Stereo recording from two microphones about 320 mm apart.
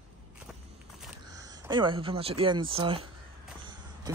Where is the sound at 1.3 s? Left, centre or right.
Centre.